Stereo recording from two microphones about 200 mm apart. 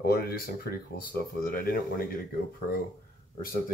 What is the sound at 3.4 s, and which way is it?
Speech, 45° left (ahead or behind).